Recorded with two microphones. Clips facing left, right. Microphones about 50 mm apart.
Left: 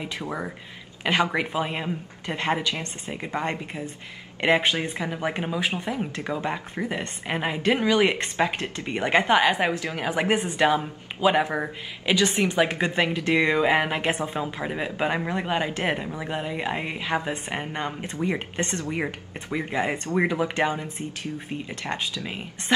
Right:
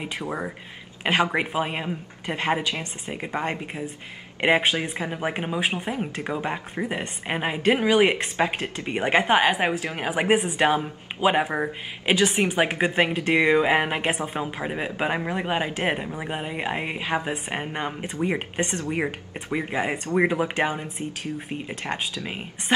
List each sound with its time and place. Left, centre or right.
0.0 s a woman's voice: right
5.6 s speech: right
5.9 s a woman's voice: centre
13.4 s a woman's voice: centre